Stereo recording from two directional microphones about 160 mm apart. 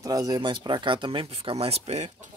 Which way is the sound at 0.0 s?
20° right (ahead or behind).